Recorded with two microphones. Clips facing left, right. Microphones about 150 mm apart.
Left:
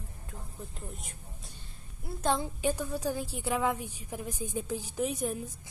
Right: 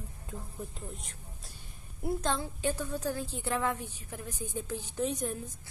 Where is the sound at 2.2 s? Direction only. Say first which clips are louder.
Left 7 dB; 15° left (ahead or behind).